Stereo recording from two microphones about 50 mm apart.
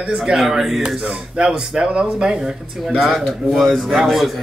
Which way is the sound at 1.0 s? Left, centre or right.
Centre.